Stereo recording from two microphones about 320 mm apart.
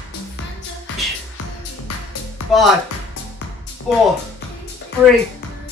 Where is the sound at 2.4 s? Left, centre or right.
Left.